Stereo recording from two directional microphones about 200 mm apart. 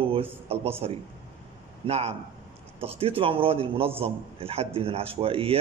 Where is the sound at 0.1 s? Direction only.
30° right (ahead or behind).